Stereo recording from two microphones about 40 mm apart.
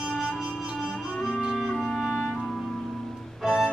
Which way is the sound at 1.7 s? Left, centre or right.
Centre.